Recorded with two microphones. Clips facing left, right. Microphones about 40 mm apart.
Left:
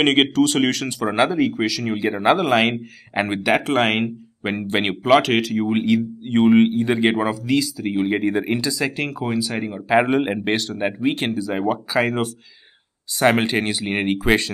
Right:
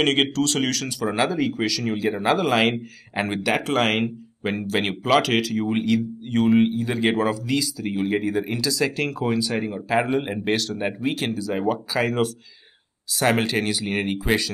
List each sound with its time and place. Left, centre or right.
0.0 s speech: centre
5.0 s speech: centre; by 8.6 s left
8.6 s speech: centre
10.0 s speech: left
10.8 s speech: centre
14.0 s speech: left